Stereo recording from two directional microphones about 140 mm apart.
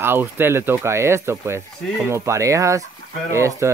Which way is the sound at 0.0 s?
15° right (ahead or behind).